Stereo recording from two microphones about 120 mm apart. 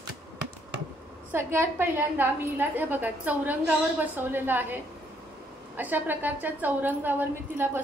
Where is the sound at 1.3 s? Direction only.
20° right (ahead or behind).